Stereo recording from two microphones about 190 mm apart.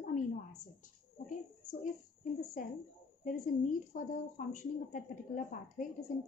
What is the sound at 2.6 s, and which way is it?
Speech, 45° left (ahead or behind).